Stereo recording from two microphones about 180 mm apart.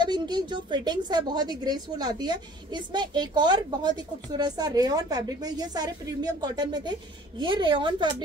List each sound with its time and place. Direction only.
0.0 s a woman's voice: 25° right (ahead or behind)